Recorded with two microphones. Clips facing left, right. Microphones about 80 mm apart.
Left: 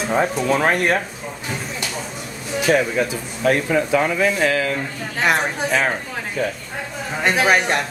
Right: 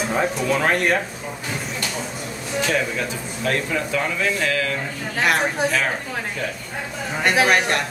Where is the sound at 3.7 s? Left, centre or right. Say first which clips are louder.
Left 5 dB; left.